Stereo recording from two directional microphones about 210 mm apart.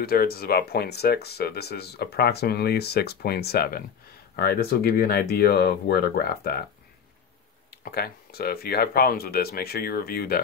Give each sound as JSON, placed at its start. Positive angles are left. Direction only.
{"t": 0.0, "sound": "speech", "side_deg": 45}
{"t": 7.7, "sound": "speech", "side_deg": 50}